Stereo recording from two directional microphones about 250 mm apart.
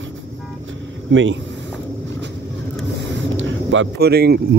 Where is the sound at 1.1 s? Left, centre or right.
Right.